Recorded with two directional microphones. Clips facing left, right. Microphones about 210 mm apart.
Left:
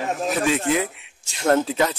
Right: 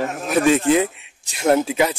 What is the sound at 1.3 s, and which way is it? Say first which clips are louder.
Speech: right 2 dB; 10° right (ahead or behind).